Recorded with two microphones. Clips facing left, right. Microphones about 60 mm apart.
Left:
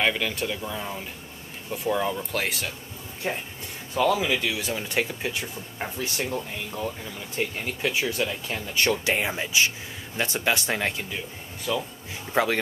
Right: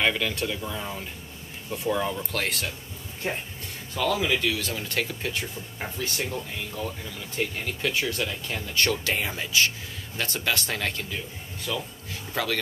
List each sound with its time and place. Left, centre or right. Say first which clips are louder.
0.0 s speech: even; centre
3.9 s speech: left 2 dB; centre